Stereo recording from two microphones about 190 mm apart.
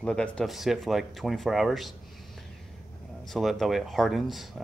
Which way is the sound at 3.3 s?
Centre (ahead or behind).